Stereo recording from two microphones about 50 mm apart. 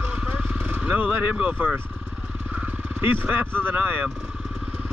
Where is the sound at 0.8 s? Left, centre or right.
Right.